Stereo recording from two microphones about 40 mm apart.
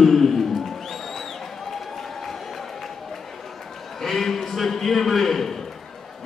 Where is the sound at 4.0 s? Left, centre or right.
Centre.